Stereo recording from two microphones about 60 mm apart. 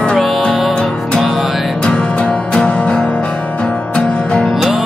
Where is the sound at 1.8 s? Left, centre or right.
Centre.